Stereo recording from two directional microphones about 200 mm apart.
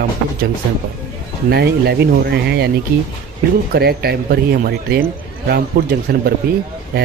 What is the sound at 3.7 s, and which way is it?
Speech, 50° right (ahead or behind).